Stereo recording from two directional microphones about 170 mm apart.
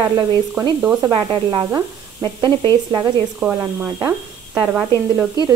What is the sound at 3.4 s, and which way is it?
Speech, 10° right (ahead or behind).